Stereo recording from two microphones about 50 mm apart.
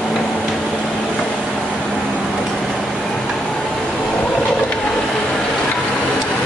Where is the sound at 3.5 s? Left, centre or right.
Centre.